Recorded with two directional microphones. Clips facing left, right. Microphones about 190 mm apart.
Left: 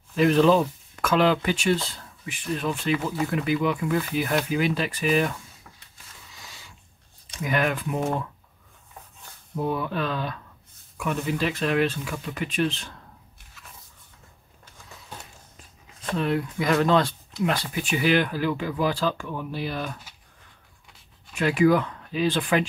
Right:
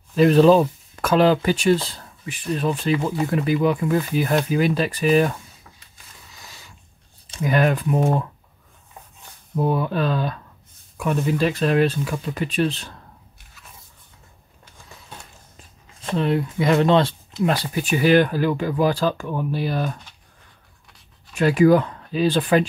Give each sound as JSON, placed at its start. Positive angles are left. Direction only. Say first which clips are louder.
{"t": 0.1, "sound": "speech", "louder": "right 5 dB", "side_deg": -35}
{"t": 7.2, "sound": "speech", "louder": "right 5 dB", "side_deg": -35}
{"t": 9.6, "sound": "speech", "louder": "right 5 dB", "side_deg": -35}
{"t": 16.1, "sound": "speech", "louder": "right 4 dB", "side_deg": -25}
{"t": 21.4, "sound": "speech", "louder": "right 5 dB", "side_deg": -40}